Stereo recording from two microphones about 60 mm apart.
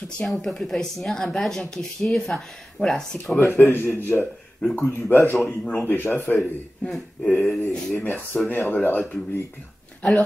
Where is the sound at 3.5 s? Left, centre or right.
Left.